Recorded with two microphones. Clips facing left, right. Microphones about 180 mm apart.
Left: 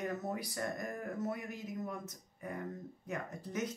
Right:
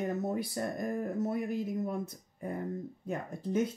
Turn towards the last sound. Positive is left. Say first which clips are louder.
# right 8 dB
turn(degrees=-30)  # may be behind; listen again after turning